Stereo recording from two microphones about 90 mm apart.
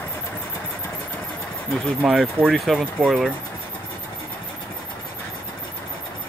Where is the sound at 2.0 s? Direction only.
5° right (ahead or behind).